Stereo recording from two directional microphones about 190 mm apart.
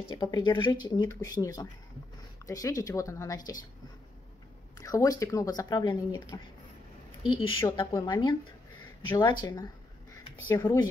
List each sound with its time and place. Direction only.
0.1 s speech: 25° left (ahead or behind)
4.7 s speech: 15° left (ahead or behind)
7.6 s speech: 20° left (ahead or behind)